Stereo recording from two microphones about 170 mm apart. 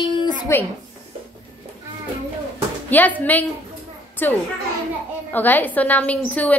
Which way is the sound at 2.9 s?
10° left (ahead or behind).